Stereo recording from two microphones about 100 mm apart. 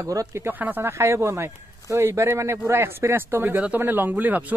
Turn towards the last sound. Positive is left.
turn(degrees=-15)  # may be behind; listen again after turning